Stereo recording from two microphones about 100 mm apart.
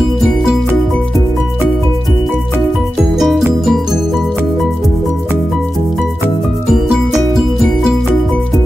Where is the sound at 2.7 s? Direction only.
5° right (ahead or behind).